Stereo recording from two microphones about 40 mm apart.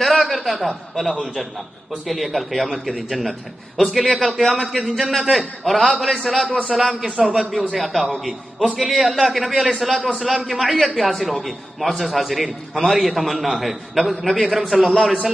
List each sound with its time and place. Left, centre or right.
0.0 s chuckle: centre
2.0 s a man's voice: centre